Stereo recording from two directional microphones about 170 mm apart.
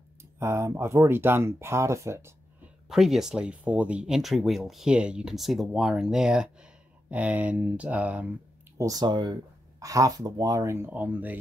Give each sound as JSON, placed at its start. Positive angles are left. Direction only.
{"t": 0.2, "sound": "speech", "side_deg": -15}
{"t": 2.9, "sound": "speech", "side_deg": 0}
{"t": 8.7, "sound": "speech", "side_deg": -20}